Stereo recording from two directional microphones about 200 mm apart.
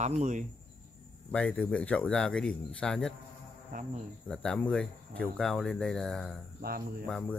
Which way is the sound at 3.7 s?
40° right (ahead or behind).